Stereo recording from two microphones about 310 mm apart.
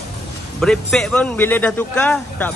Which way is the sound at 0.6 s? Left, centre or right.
Centre.